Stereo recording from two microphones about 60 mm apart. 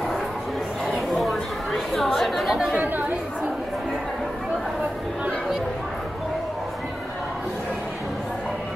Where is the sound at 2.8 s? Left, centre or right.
Right.